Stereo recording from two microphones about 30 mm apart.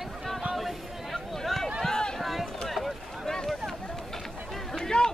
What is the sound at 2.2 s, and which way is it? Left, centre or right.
Run, centre.